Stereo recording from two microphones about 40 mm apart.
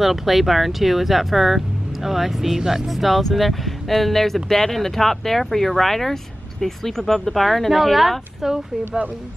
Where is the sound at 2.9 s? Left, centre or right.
Centre.